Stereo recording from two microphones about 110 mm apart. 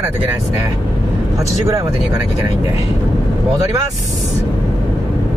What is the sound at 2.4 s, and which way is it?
Speech, 30° right (ahead or behind).